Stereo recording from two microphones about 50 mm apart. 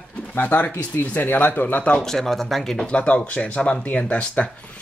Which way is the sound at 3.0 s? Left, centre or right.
Left.